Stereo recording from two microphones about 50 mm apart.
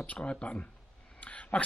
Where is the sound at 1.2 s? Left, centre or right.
Left.